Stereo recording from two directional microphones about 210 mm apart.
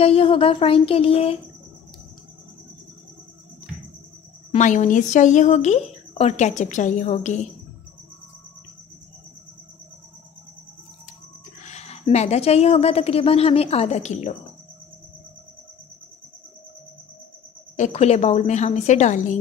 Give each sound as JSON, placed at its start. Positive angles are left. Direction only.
{"t": 0.0, "sound": "a woman's voice", "side_deg": 25}
{"t": 4.5, "sound": "a woman's voice", "side_deg": 35}
{"t": 11.6, "sound": "a woman's voice", "side_deg": 30}
{"t": 17.7, "sound": "a woman's voice", "side_deg": 35}